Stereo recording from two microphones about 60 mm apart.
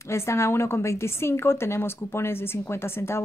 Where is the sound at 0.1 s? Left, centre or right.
Left.